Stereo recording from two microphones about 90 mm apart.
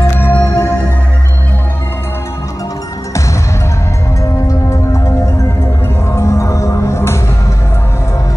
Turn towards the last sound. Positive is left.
turn(degrees=30)  # may be behind; listen again after turning